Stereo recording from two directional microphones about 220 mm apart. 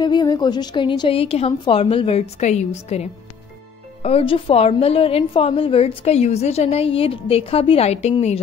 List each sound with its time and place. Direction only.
0.0 s a woman's voice: 20° left (ahead or behind)